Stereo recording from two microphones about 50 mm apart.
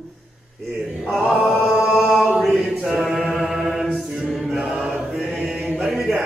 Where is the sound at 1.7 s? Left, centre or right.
Centre.